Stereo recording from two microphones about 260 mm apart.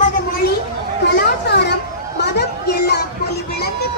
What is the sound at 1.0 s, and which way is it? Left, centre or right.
Children playing, left.